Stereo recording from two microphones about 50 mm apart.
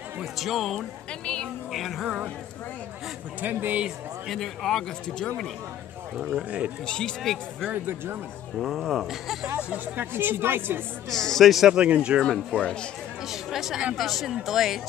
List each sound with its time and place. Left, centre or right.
0.2 s speech: centre
1.2 s a sound: centre
1.7 s speech: centre
3.3 s speech: right
4.3 s speech: centre
6.9 s speech: centre
7.7 s speech: right
8.5 s speech: centre
9.9 s speech: right
11.1 s speech: centre
11.6 s speech: centre
13.3 s speech: centre